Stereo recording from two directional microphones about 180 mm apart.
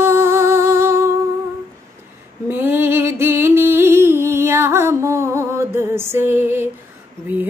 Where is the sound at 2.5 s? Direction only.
10° right (ahead or behind).